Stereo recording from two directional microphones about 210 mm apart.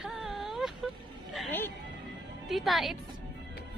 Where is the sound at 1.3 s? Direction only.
10° left (ahead or behind).